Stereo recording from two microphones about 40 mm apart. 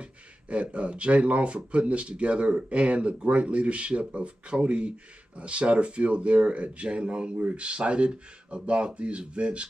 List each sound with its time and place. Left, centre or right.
0.0 s speech: right